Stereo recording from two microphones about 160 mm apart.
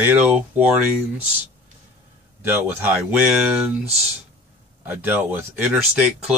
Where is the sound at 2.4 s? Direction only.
10° right (ahead or behind).